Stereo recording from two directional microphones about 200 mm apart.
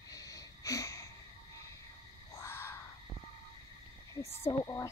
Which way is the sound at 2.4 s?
10° left (ahead or behind).